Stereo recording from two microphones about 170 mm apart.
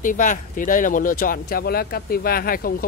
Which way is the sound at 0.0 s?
50° left (ahead or behind).